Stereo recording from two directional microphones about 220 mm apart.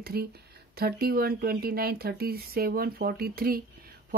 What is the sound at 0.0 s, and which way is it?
Speech, 45° right (ahead or behind).